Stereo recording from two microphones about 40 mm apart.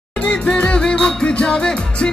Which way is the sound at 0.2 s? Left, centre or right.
Left.